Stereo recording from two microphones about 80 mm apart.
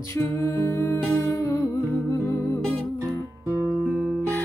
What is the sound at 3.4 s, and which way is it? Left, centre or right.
Music, right.